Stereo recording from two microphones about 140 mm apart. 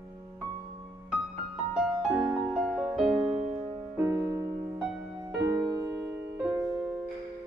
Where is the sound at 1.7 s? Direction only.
5° right (ahead or behind).